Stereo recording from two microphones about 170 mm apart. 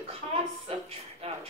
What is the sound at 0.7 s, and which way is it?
Speech, 35° right (ahead or behind).